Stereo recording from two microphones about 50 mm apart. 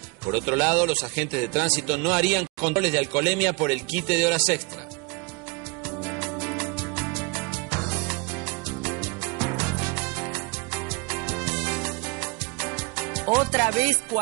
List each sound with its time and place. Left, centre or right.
0.2 s a man's voice: right
5.9 s music: centre